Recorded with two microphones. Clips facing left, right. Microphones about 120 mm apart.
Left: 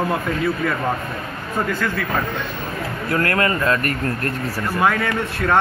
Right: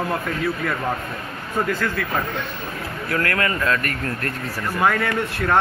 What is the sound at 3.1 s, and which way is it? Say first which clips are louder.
Speech: left 3 dB; 35° left (ahead or behind).